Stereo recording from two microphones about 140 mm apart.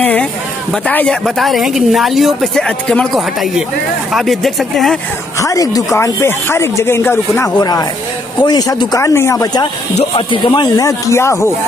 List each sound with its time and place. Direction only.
0.0 s a sound: 10° left (ahead or behind)
0.8 s speech: 5° left (ahead or behind)
5.4 s speech: 25° left (ahead or behind)
7.5 s speech: 30° left (ahead or behind)
10.9 s speech: 20° left (ahead or behind)